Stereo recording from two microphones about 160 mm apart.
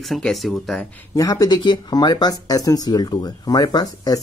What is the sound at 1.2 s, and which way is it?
Speech, 20° left (ahead or behind).